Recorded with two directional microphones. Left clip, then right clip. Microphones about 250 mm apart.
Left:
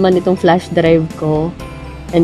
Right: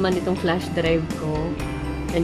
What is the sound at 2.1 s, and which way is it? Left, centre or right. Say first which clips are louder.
Speech: left 11 dB; left.